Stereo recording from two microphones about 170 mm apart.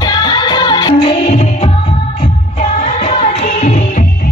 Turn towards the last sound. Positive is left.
turn(degrees=45)  # may be behind; listen again after turning